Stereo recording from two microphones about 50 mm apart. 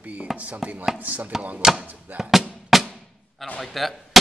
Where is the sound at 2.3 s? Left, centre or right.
Centre.